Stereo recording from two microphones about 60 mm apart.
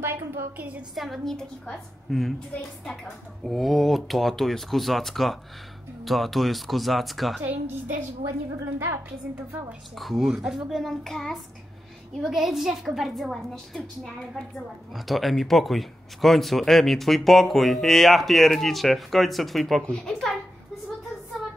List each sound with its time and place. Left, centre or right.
0.0 s a woman's voice: right
0.9 s speech: centre
1.3 s a woman's voice: centre
3.4 s speech: centre
8.7 s a woman's voice: right
9.9 s speech: centre
10.9 s speech: centre
15.0 s a woman's voice: centre